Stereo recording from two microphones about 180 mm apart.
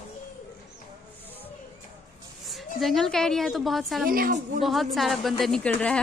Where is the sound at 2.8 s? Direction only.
Centre (ahead or behind).